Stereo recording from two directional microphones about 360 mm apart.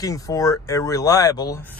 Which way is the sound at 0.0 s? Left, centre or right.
Centre.